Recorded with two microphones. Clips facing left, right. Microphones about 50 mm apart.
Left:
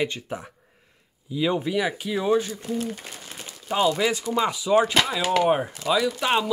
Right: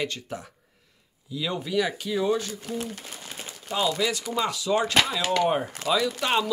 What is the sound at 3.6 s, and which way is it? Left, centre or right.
Speech, left.